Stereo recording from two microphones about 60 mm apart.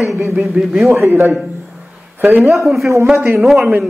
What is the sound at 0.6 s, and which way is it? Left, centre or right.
Speech, right.